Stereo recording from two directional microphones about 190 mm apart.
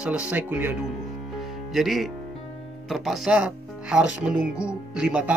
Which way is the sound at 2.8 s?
Centre (ahead or behind).